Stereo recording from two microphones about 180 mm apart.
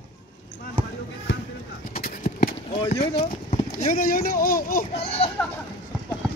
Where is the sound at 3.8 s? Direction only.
50° left (ahead or behind).